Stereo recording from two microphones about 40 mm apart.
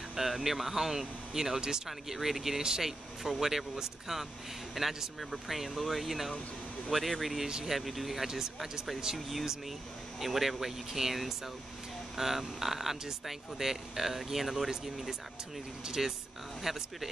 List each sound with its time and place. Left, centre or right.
0.1 s speech: centre
7.4 s speech: centre
7.7 s speech: centre